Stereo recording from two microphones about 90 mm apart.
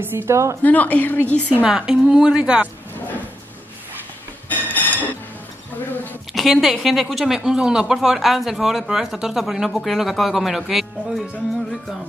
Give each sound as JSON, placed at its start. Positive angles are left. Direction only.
{"t": 0.0, "sound": "a woman's voice", "side_deg": -25}
{"t": 0.6, "sound": "a woman's voice", "side_deg": 20}
{"t": 1.6, "sound": "a woman's voice", "side_deg": -10}
{"t": 4.5, "sound": "a sound", "side_deg": 20}
{"t": 6.3, "sound": "speech", "side_deg": 0}